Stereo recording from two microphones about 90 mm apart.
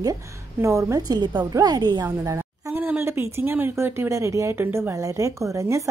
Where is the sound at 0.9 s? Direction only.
50° right (ahead or behind).